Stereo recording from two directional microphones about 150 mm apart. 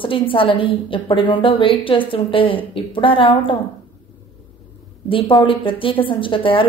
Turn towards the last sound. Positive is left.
turn(degrees=35)  # may be behind; listen again after turning